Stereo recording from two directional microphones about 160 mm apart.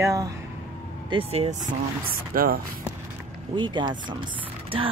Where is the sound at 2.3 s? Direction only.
65° right (ahead or behind).